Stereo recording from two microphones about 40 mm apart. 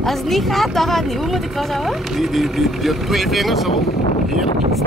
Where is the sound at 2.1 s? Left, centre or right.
Centre.